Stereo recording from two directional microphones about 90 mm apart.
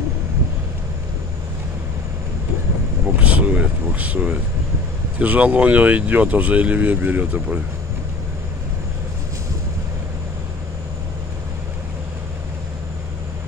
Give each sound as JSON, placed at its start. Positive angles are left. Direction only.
{"t": 3.2, "sound": "speech", "side_deg": -15}